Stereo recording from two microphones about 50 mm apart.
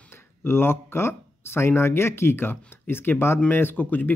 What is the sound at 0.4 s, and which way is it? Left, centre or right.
Speech, left.